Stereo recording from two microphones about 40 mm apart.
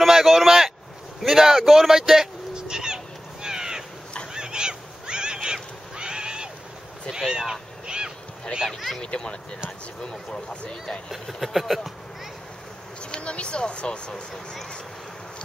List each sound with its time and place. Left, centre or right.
0.0 s a sound: centre
1.2 s speech: centre
2.5 s fowl: centre
3.4 s crow: centre
4.3 s a sound: centre
7.1 s speech: centre
7.8 s a sound: right
8.6 s speech: centre
9.0 s speech: left
11.1 s speech: centre
13.0 s speech: left